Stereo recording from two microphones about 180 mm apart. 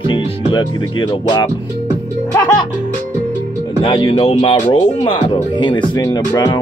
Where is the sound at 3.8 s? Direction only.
30° left (ahead or behind).